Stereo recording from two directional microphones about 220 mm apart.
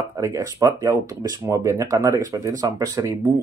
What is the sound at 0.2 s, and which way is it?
Speech, 15° right (ahead or behind).